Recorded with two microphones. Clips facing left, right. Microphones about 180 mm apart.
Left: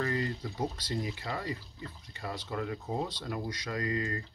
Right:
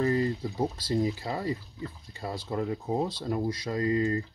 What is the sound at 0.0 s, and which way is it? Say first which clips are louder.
Speech: right 6 dB; 25° right (ahead or behind).